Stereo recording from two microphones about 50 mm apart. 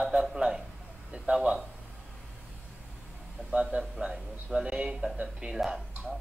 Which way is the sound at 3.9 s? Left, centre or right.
Centre.